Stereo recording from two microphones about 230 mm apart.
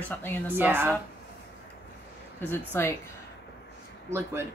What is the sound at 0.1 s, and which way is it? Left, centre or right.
Speech, centre.